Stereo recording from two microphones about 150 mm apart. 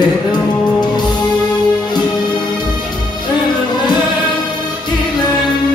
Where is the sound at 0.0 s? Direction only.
30° left (ahead or behind).